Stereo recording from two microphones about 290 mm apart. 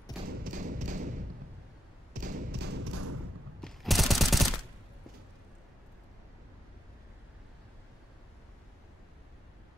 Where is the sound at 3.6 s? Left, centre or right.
Centre.